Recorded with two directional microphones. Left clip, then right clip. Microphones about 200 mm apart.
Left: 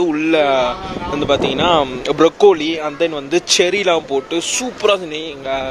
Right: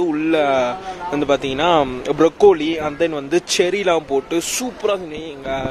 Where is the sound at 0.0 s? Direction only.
10° right (ahead or behind); by 4.6 s 25° right (ahead or behind).